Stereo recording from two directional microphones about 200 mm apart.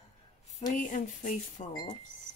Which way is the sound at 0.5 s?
40° left (ahead or behind).